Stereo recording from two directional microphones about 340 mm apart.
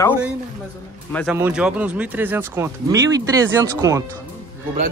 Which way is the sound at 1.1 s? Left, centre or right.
Centre.